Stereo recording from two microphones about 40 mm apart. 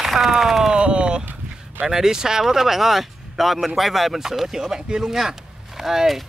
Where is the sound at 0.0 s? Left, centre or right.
Centre.